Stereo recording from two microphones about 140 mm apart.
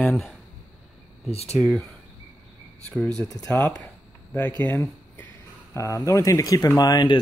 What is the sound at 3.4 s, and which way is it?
Speech, 10° left (ahead or behind).